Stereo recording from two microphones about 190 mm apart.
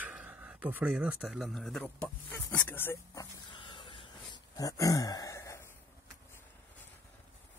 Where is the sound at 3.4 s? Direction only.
25° left (ahead or behind).